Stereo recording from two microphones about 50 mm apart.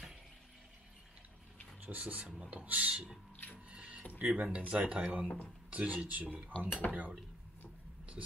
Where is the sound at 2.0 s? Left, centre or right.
Right.